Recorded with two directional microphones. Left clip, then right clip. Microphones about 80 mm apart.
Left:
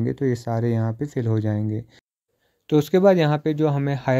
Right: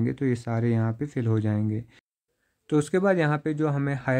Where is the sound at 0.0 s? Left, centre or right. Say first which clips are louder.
Left 4 dB; left.